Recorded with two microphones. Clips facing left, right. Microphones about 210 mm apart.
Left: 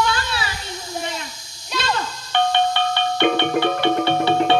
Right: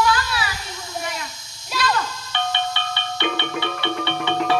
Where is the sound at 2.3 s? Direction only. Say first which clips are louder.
Left 8 dB; 50° left (ahead or behind).